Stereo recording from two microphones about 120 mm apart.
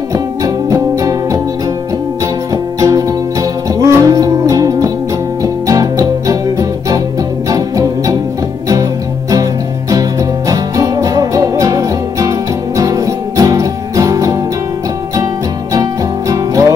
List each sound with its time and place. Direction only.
0.1 s music: 30° right (ahead or behind)
2.5 s music: 30° right (ahead or behind)
9.3 s music: 30° right (ahead or behind)
15.7 s music: 30° right (ahead or behind)